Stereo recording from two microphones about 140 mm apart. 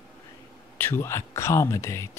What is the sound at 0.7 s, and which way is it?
Speech, 15° left (ahead or behind).